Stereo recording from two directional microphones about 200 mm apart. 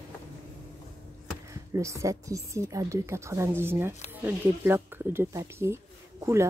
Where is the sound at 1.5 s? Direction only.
15° right (ahead or behind).